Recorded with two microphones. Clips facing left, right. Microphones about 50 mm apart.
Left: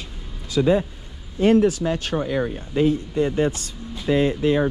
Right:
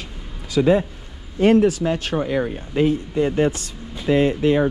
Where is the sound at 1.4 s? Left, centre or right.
Right.